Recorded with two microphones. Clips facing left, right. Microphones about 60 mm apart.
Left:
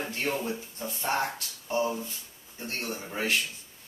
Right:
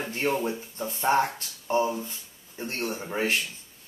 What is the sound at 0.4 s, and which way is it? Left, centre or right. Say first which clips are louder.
Speech: right 3 dB; right.